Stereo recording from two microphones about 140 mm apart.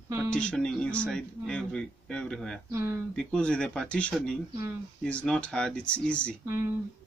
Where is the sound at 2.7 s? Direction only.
20° right (ahead or behind).